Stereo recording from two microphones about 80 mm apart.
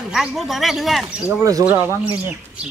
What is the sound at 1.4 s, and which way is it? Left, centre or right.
Speech, right.